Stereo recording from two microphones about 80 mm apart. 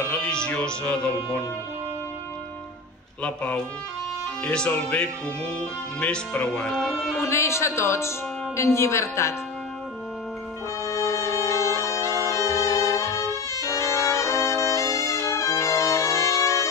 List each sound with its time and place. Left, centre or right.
0.1 s speech: centre
3.2 s speech: centre
7.2 s speech: left
10.8 s bagpipes: left